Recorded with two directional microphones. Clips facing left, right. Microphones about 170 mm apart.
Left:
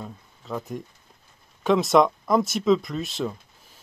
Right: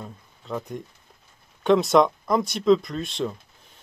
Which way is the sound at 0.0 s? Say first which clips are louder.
Left 1 dB; centre (ahead or behind).